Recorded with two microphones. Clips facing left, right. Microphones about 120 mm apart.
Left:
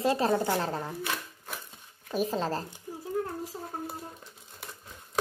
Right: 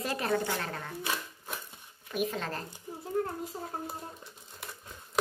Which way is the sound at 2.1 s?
30° left (ahead or behind).